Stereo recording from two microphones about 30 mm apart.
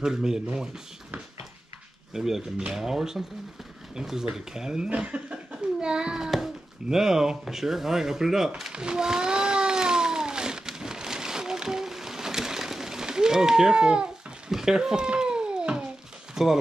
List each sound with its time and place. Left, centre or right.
0.0 s speech: centre
2.1 s speech: centre
4.8 s speech: right
5.8 s a child's voice: right
6.9 s speech: centre
8.7 s a sound: right
14.5 s speech: centre
15.1 s cat: right
16.4 s speech: centre